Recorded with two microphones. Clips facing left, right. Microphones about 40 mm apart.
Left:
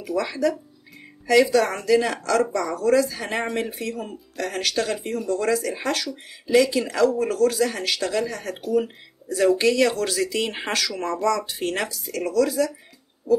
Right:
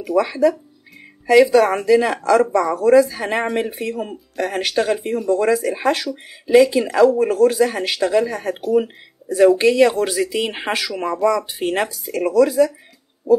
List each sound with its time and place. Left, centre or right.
0.0 s speech: centre